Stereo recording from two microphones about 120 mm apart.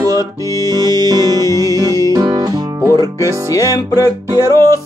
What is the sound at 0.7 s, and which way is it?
Music, 35° right (ahead or behind).